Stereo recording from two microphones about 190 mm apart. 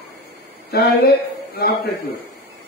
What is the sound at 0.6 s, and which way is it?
Speech, 60° left (ahead or behind).